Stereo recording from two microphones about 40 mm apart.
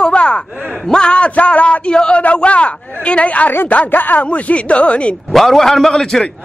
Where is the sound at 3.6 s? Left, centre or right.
Left.